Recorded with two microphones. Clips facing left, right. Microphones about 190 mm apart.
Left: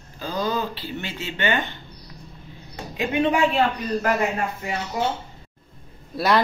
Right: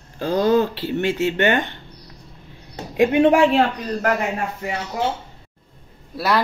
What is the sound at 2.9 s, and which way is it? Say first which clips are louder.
Speech: right 7 dB; 65° right (ahead or behind).